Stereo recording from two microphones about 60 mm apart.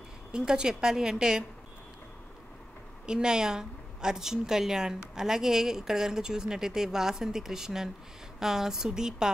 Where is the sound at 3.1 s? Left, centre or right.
Centre.